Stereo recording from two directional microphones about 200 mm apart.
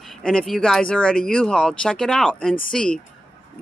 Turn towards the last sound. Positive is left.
turn(degrees=5)  # may be behind; listen again after turning